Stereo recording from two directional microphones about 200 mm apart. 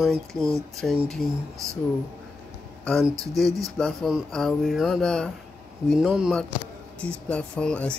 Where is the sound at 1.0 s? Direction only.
Centre (ahead or behind).